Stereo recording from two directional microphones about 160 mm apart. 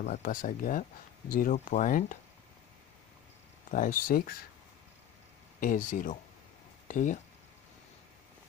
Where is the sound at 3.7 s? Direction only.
60° left (ahead or behind).